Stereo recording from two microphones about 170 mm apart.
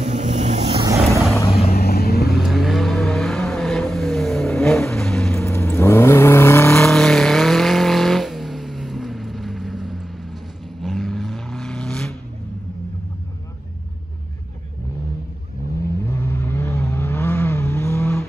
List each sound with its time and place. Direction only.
0.0 s vehicle: 45° right (ahead or behind)
0.8 s vehicle: 20° right (ahead or behind)
1.7 s vehicle: 65° left (ahead or behind)
2.3 s vehicle: centre (ahead or behind)
5.4 s vehicle: 15° left (ahead or behind)
6.8 s vehicle: centre (ahead or behind)
15.8 s vehicle: 15° left (ahead or behind)